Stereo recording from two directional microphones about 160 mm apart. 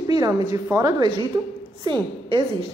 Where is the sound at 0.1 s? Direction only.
25° right (ahead or behind).